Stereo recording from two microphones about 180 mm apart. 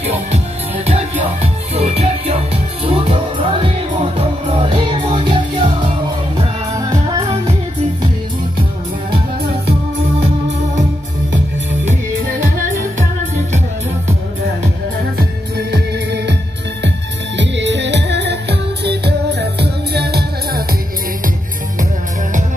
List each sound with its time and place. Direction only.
0.8 s music: 35° right (ahead or behind)
15.1 s music: 65° right (ahead or behind)
17.4 s music: 80° right